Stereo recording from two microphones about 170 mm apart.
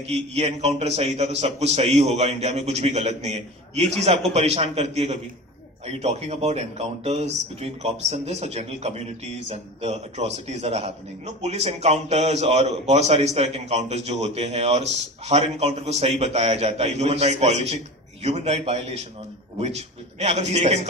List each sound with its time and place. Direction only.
0.0 s a man's voice: 35° right (ahead or behind)